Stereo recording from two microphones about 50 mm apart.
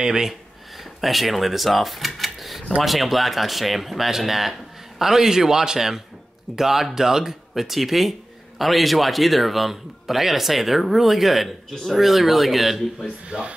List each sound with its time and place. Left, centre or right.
0.0 s speech: centre
13.3 s speech: centre